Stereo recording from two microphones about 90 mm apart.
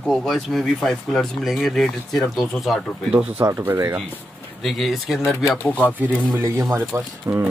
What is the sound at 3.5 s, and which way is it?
Speech, 35° right (ahead or behind).